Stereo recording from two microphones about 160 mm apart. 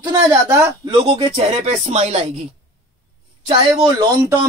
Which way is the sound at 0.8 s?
35° right (ahead or behind).